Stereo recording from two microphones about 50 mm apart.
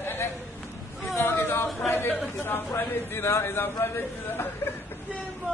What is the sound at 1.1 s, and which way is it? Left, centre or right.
Chatter, left.